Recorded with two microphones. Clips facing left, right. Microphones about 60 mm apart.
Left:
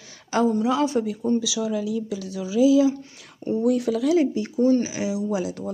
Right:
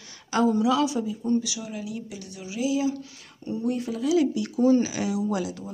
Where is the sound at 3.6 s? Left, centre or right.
Left.